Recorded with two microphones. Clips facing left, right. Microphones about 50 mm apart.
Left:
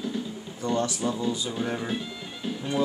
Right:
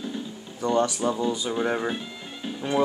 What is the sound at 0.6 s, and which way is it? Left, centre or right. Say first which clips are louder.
Speech: right 4 dB; centre.